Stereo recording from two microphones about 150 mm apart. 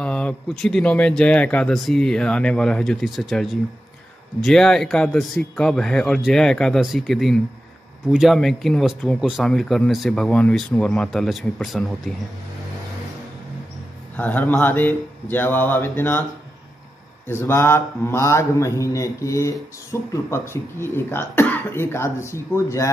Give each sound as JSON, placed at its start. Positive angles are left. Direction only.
{"t": 0.0, "sound": "speech", "side_deg": 10}
{"t": 14.1, "sound": "a man's voice", "side_deg": 10}
{"t": 17.3, "sound": "a man's voice", "side_deg": 15}